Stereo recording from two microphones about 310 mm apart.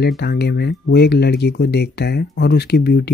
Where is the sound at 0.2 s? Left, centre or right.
Left.